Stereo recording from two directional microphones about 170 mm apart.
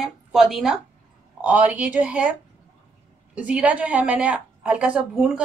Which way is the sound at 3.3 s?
10° right (ahead or behind).